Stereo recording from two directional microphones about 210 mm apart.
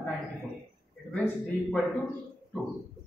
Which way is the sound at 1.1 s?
5° left (ahead or behind).